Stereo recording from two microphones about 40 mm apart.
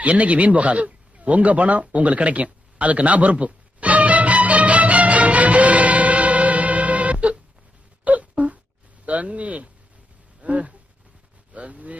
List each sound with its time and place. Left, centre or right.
0.0 s a sound: right
8.0 s wail: right
9.0 s speech: right